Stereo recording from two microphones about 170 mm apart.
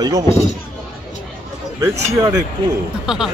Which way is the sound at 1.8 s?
20° right (ahead or behind).